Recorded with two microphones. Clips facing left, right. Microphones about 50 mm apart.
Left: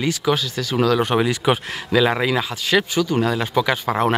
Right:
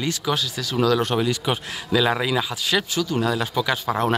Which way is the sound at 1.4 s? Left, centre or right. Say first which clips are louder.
Left 6 dB; left.